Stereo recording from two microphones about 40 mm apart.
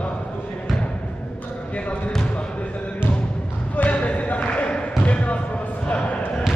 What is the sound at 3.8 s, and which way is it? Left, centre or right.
Basketball bounce, left.